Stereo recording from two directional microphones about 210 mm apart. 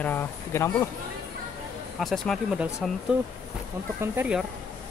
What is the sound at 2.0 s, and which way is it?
Speech, centre (ahead or behind).